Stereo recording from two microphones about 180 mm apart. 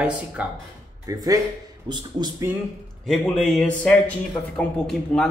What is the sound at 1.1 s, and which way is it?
A man's voice, 20° right (ahead or behind).